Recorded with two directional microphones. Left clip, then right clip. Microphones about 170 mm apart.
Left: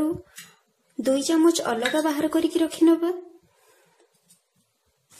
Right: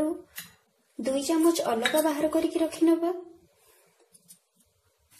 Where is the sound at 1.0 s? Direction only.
20° left (ahead or behind).